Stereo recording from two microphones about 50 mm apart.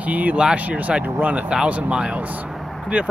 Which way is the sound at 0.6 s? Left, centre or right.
Right.